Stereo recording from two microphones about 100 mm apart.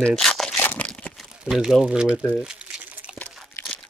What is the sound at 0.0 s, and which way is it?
Crumpling, 5° left (ahead or behind).